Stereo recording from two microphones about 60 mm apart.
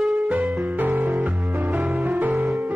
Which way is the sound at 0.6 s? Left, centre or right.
Right.